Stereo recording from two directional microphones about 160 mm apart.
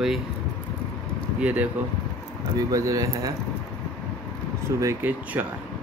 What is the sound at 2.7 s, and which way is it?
Speech, 20° right (ahead or behind).